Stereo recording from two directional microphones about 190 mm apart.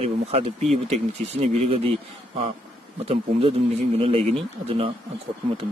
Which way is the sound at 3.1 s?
30° right (ahead or behind).